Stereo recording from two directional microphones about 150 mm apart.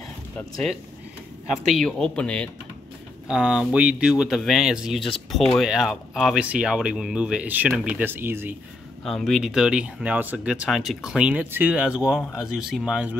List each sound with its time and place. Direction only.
0.4 s speech: 5° left (ahead or behind)
3.3 s speech: 5° right (ahead or behind)
9.0 s speech: centre (ahead or behind)